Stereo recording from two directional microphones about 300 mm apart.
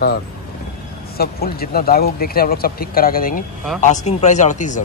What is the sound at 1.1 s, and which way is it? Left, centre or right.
Speech, left.